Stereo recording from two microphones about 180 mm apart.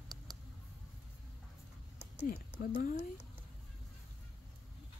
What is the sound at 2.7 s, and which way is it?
Speech, 45° left (ahead or behind).